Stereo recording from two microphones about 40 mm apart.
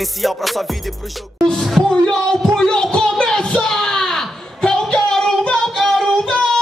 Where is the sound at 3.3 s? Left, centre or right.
Centre.